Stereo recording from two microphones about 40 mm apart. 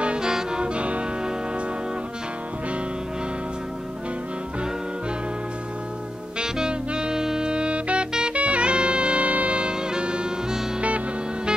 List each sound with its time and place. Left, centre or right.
0.0 s brass instrument: right
0.3 s brass instrument: centre
0.6 s music: right
6.4 s saxophone: right
8.1 s music: centre
8.4 s music: right